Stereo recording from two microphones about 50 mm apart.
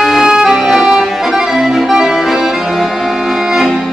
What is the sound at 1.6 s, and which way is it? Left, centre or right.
Accordion, centre.